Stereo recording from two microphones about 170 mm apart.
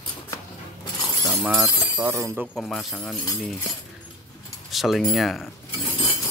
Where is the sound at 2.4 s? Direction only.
Centre (ahead or behind).